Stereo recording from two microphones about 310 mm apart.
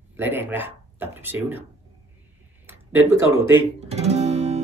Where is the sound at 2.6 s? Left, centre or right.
Centre.